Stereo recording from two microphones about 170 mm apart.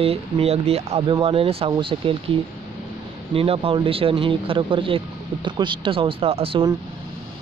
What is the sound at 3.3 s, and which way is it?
Speech, 35° right (ahead or behind).